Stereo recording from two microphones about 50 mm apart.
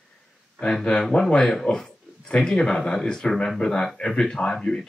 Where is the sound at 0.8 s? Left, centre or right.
Centre.